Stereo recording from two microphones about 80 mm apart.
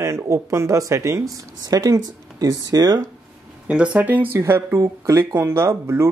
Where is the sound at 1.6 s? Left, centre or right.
Right.